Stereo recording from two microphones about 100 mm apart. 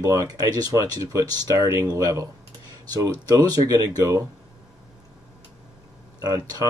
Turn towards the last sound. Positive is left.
turn(degrees=-40)  # may be behind; listen again after turning